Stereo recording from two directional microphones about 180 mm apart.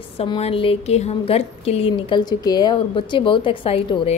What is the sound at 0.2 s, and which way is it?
A woman's voice, 35° left (ahead or behind).